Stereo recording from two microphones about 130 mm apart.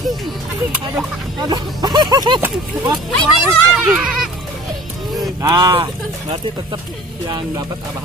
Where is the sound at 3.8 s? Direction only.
5° right (ahead or behind).